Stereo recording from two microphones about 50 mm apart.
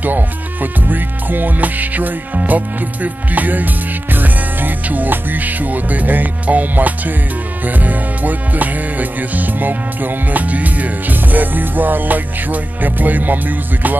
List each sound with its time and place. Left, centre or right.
0.0 s speech: right